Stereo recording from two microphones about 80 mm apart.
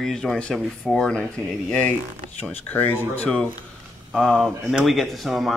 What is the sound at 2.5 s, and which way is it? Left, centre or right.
Speech, left.